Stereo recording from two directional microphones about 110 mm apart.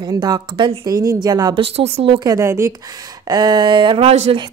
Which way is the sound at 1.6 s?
60° right (ahead or behind).